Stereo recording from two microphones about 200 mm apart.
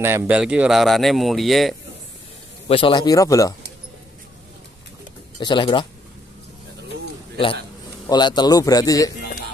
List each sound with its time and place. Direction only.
0.0 s speech: 10° right (ahead or behind)
2.7 s speech: 25° left (ahead or behind)
5.4 s a man's voice: 25° left (ahead or behind)
8.1 s a man's voice: 20° left (ahead or behind)